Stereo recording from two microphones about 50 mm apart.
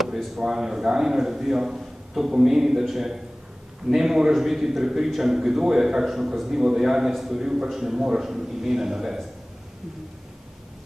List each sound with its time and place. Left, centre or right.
0.0 s a man's voice: centre